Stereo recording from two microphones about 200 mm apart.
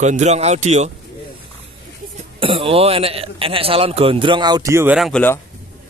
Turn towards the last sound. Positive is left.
turn(degrees=0)  # may be behind; listen again after turning